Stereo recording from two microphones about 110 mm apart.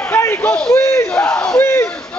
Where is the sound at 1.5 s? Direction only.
20° left (ahead or behind).